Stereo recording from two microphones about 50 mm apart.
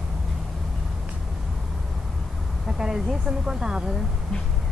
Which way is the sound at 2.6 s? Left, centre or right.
Centre.